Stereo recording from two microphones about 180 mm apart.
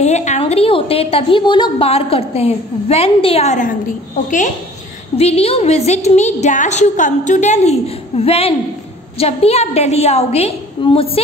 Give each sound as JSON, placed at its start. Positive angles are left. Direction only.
{"t": 0.0, "sound": "a woman's voice", "side_deg": 40}
{"t": 5.1, "sound": "a woman's voice", "side_deg": 35}